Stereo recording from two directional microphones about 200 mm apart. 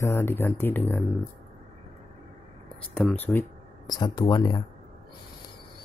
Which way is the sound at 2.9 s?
5° left (ahead or behind).